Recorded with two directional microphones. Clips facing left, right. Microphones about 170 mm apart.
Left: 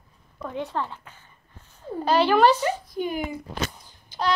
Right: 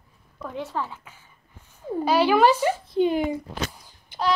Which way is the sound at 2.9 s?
30° right (ahead or behind).